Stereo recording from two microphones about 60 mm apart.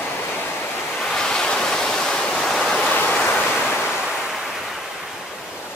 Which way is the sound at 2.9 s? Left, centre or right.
Left.